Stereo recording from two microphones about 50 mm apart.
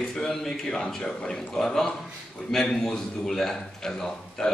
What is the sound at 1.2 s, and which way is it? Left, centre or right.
Speech, left.